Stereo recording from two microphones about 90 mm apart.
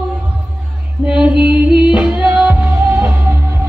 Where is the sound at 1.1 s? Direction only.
10° right (ahead or behind).